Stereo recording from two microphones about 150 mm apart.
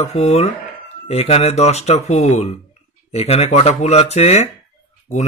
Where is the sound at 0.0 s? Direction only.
45° left (ahead or behind).